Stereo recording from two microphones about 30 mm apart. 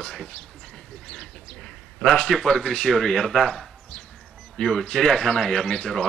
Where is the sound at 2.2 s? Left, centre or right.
Left.